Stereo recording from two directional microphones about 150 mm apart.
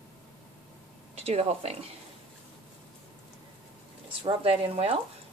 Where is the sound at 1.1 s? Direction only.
45° right (ahead or behind).